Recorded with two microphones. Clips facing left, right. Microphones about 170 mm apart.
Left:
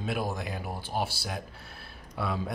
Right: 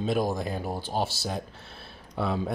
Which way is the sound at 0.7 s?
30° right (ahead or behind).